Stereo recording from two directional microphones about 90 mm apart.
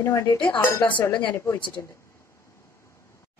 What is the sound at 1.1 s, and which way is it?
Speech, 55° left (ahead or behind).